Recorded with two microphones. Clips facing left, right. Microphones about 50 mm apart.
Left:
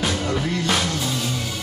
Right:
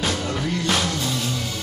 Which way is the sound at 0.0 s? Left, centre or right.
Centre.